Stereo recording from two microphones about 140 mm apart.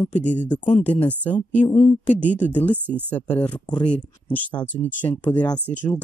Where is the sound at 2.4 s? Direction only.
10° left (ahead or behind).